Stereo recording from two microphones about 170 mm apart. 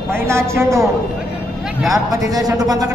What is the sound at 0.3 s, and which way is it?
Speech, 15° right (ahead or behind).